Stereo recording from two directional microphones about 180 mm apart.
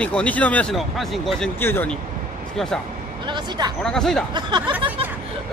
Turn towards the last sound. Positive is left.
turn(degrees=-25)  # may be behind; listen again after turning